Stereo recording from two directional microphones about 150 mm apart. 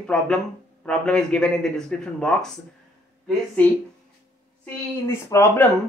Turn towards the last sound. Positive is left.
turn(degrees=15)  # may be behind; listen again after turning